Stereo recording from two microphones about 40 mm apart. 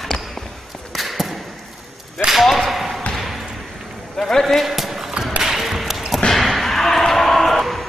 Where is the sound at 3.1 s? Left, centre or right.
Centre.